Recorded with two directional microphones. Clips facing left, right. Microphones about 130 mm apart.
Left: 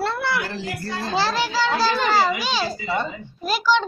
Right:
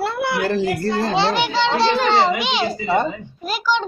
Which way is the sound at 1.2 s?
25° right (ahead or behind).